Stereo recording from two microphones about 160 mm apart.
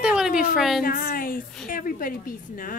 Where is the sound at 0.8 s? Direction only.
60° left (ahead or behind).